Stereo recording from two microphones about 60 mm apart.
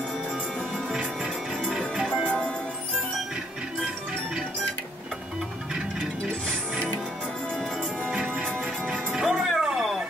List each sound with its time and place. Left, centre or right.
1.8 s music: centre
2.2 s music: centre
8.1 s music: centre